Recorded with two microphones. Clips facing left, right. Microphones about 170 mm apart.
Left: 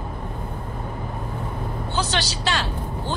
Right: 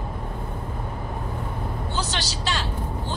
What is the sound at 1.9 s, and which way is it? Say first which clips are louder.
Vehicle: left 6 dB; 70° left (ahead or behind).